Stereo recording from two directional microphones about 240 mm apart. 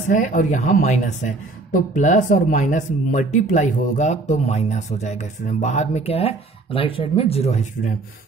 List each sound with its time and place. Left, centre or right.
0.1 s speech: left